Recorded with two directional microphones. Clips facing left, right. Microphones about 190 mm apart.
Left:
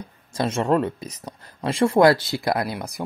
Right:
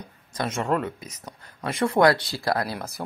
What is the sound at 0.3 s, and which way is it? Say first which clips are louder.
Speech: left 4 dB; 25° left (ahead or behind).